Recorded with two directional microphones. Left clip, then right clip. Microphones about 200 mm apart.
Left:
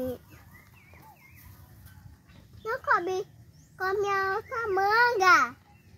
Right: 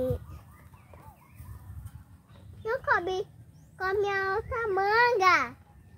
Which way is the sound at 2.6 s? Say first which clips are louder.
Left 1 dB; 45° left (ahead or behind).